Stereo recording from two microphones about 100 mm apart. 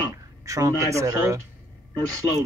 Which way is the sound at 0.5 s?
30° right (ahead or behind).